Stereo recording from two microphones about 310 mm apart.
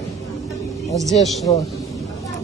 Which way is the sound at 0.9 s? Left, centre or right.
Centre.